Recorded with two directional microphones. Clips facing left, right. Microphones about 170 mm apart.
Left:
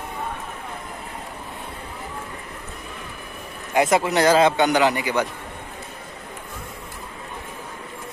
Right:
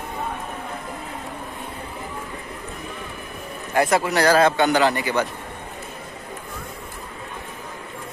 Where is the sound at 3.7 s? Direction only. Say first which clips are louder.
Left 1 dB; 20° left (ahead or behind).